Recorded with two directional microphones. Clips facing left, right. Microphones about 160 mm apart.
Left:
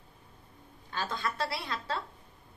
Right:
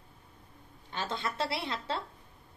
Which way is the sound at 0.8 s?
25° right (ahead or behind).